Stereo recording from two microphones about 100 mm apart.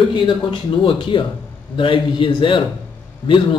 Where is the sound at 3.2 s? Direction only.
40° left (ahead or behind).